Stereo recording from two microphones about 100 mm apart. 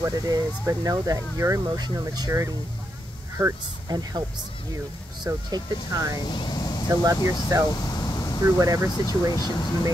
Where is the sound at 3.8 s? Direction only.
45° right (ahead or behind).